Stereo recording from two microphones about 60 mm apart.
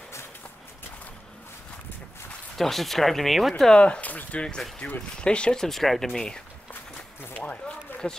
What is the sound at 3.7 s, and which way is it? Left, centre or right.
Speech, centre.